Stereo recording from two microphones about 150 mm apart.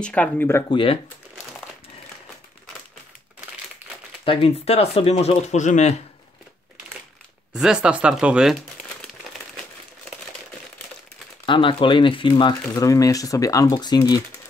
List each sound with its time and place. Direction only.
0.0 s speech: 10° left (ahead or behind)
0.7 s speech: 35° left (ahead or behind)
4.2 s speech: 40° left (ahead or behind)
7.5 s speech: 5° right (ahead or behind)
11.4 s speech: 35° left (ahead or behind)